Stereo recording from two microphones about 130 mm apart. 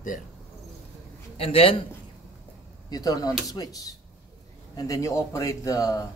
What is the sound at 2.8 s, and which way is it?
A man's voice, 30° left (ahead or behind).